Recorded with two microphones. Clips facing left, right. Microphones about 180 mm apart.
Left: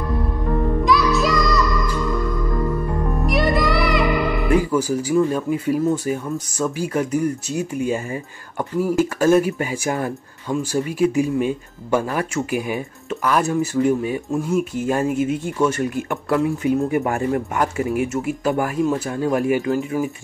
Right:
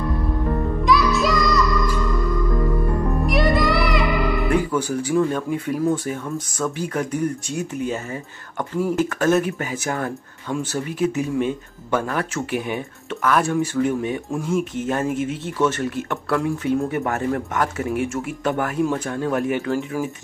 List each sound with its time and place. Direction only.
0.8 s music: centre (ahead or behind)
3.3 s music: centre (ahead or behind)
4.5 s speech: 5° left (ahead or behind)